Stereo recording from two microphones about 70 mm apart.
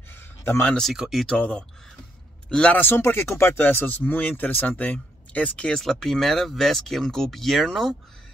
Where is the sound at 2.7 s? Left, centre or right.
Left.